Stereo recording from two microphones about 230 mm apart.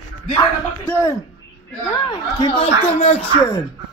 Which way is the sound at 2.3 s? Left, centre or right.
Left.